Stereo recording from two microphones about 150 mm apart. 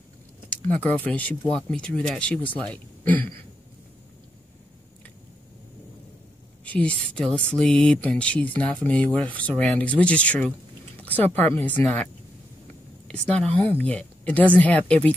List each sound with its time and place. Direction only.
0.7 s speech: 10° left (ahead or behind)
3.1 s a sound: 10° left (ahead or behind)
6.6 s speech: 10° left (ahead or behind)
13.1 s speech: 5° left (ahead or behind)